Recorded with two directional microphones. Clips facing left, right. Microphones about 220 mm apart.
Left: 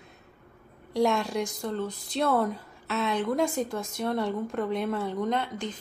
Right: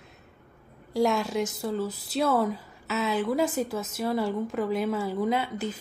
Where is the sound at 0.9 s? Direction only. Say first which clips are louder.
Even; centre (ahead or behind).